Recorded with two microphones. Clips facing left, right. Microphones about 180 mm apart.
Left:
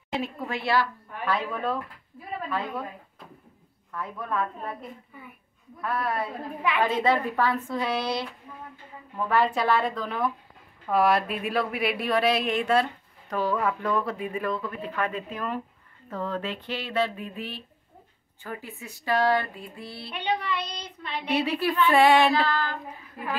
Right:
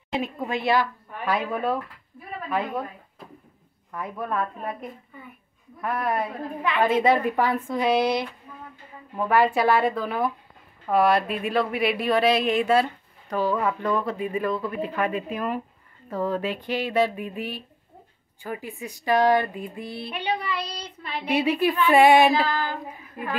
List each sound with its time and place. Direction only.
0.1 s child singing: 20° right (ahead or behind)
3.9 s child singing: 15° right (ahead or behind)
10.9 s speech: centre (ahead or behind)
16.1 s child singing: 10° right (ahead or behind)